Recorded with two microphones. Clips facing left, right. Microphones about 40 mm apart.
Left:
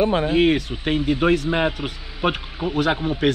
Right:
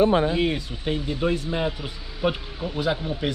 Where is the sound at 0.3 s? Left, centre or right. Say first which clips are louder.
Left 6 dB; left.